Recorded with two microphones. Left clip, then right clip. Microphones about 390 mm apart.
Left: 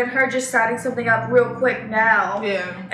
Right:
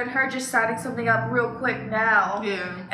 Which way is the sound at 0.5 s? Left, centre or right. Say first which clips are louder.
Left 4 dB; centre.